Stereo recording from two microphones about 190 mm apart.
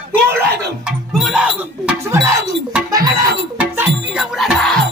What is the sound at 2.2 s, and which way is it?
Music, 15° right (ahead or behind).